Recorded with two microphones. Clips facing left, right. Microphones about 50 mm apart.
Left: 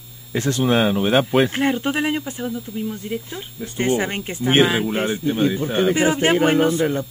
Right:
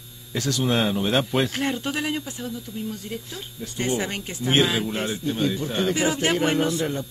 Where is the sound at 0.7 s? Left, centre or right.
Centre.